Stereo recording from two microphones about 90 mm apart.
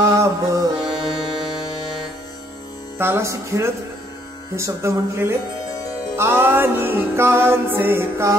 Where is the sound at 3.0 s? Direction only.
30° right (ahead or behind).